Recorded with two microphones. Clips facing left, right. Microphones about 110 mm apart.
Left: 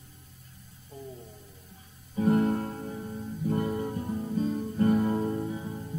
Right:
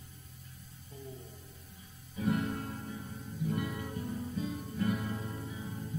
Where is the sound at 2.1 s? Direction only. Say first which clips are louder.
Left 9 dB; 40° left (ahead or behind).